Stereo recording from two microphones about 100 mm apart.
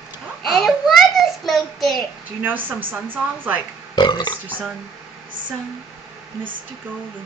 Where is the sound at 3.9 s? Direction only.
45° left (ahead or behind).